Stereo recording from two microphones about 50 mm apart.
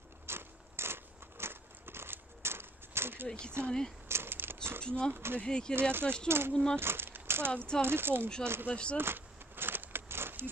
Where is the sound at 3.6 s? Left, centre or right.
Right.